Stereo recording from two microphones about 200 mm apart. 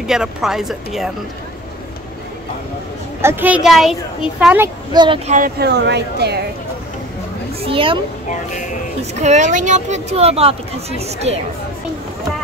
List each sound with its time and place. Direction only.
0.0 s speech: centre (ahead or behind)
3.2 s a child's voice: 10° right (ahead or behind)
4.9 s a woman's voice: 25° right (ahead or behind)
5.3 s speech: 50° right (ahead or behind)
7.6 s a woman's voice: 25° right (ahead or behind)
9.2 s speech: 35° right (ahead or behind)